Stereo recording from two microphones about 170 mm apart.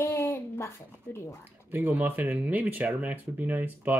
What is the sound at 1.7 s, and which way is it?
Speech, 10° right (ahead or behind).